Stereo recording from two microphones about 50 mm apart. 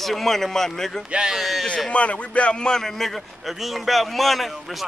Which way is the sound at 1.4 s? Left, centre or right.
Centre.